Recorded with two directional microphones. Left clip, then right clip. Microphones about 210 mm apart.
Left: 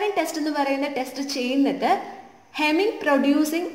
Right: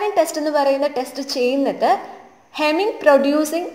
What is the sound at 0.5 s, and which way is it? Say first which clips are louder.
A woman's voice: right 8 dB; 20° right (ahead or behind).